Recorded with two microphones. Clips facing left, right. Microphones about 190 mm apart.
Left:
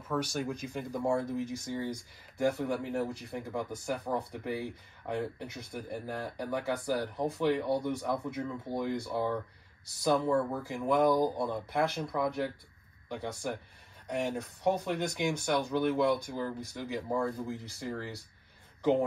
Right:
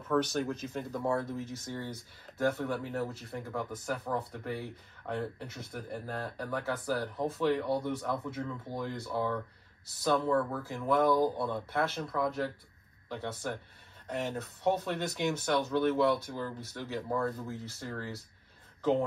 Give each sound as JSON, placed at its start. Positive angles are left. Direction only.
{"t": 0.1, "sound": "speech", "side_deg": 10}
{"t": 14.0, "sound": "speech", "side_deg": 15}